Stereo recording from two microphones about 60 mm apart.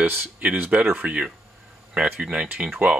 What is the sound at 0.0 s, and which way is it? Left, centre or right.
Speech, right.